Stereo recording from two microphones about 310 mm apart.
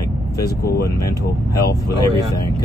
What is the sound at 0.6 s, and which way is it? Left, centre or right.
Speech, left.